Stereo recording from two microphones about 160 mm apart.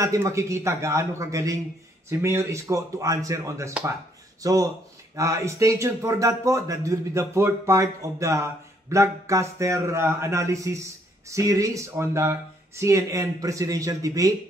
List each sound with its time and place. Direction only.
0.0 s a man's voice: 20° right (ahead or behind)